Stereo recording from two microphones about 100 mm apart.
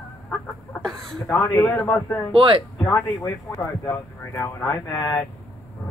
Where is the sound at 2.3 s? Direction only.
60° right (ahead or behind).